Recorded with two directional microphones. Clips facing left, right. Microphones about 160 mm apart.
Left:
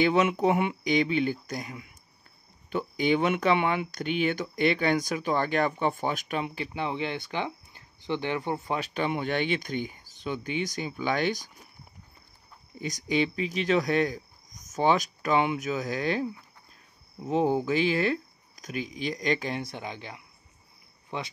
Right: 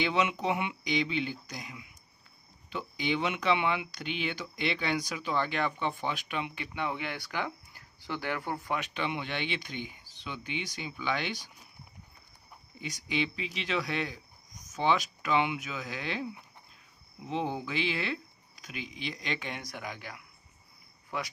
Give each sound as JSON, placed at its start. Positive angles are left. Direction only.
{"t": 0.0, "sound": "speech", "side_deg": 45}
{"t": 12.8, "sound": "speech", "side_deg": 40}